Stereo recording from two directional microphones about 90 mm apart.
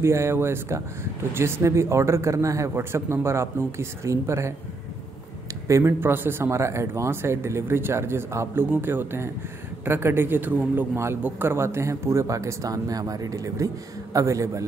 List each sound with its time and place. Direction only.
0.0 s a man's voice: 30° right (ahead or behind)
5.7 s a man's voice: 30° right (ahead or behind)